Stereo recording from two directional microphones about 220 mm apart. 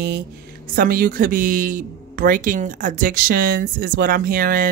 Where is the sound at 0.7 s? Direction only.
45° right (ahead or behind).